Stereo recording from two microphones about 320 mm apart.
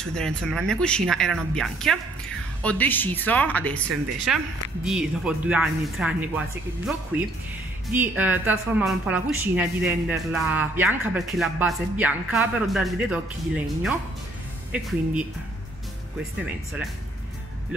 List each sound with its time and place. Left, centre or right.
0.0 s speech: centre
16.4 s speech: centre